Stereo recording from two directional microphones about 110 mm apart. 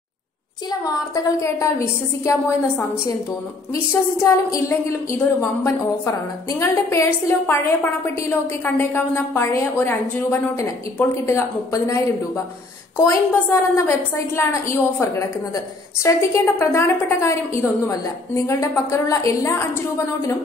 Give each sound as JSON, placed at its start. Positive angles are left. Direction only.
{"t": 0.7, "sound": "a woman's voice", "side_deg": 30}
{"t": 4.2, "sound": "a woman's voice", "side_deg": 25}